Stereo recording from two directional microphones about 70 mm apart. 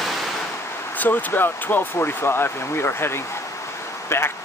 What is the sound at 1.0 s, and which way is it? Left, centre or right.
Speech, left.